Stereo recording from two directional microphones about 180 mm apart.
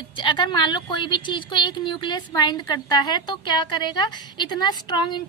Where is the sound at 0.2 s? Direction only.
25° left (ahead or behind).